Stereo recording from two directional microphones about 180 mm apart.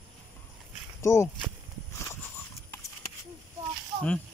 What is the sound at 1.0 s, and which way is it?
Speech, 15° left (ahead or behind).